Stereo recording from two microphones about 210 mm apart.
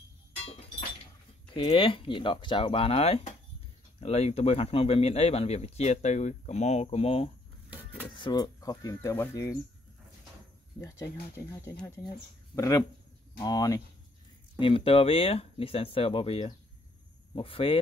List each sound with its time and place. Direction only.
1.5 s speech: 25° left (ahead or behind)
7.7 s cutlery: 10° right (ahead or behind)
8.2 s speech: 20° left (ahead or behind)
11.3 s speech: 15° left (ahead or behind)